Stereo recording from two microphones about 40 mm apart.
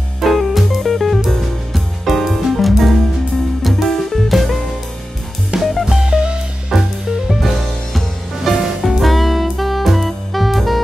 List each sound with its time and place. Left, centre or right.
0.2 s music: centre
5.6 s music: centre
6.0 s music: right
6.7 s music: centre
8.9 s saxophone: centre